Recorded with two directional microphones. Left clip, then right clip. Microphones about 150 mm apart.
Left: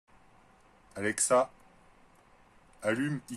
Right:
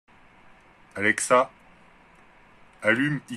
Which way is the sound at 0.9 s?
15° left (ahead or behind).